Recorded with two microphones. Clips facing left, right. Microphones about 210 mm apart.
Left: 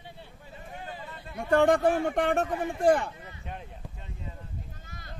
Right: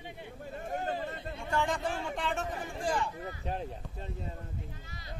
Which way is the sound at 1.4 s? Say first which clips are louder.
Left 11 dB; 60° left (ahead or behind).